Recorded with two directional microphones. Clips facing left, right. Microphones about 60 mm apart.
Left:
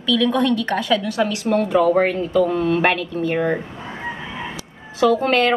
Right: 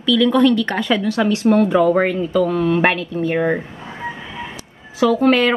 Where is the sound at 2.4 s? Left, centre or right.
Centre.